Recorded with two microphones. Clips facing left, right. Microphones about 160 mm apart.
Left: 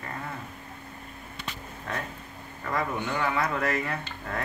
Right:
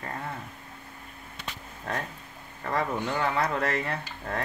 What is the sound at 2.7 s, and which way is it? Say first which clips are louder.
Speech: right 1 dB; 35° right (ahead or behind).